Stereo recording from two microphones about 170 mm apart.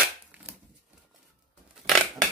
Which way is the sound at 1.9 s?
Centre (ahead or behind).